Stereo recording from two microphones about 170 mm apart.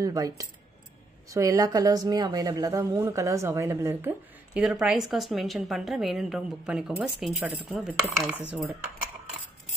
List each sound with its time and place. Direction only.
0.0 s a woman's voice: 20° right (ahead or behind)